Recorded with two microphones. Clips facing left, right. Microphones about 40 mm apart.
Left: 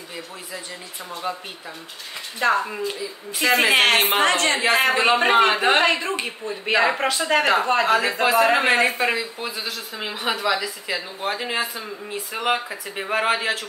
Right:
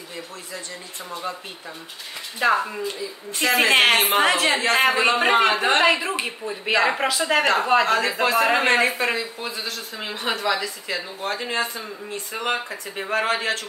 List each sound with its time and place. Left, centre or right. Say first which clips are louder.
1.3 s speech: left 3 dB; centre
2.3 s a man's voice: even; centre
2.9 s a man's voice: left 1 dB; centre